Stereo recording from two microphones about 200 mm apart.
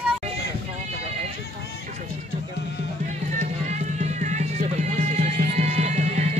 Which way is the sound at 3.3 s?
35° right (ahead or behind).